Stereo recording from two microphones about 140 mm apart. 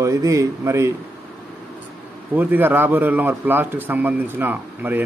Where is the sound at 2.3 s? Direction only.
15° right (ahead or behind).